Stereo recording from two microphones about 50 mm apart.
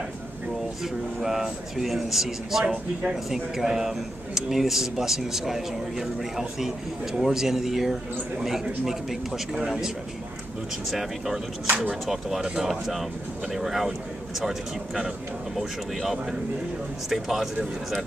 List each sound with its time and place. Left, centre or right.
1.2 s a man's voice: centre
2.6 s a man's voice: centre
10.9 s a man's voice: centre
11.6 s speech: right
12.1 s a man's voice: centre
15.5 s a man's voice: centre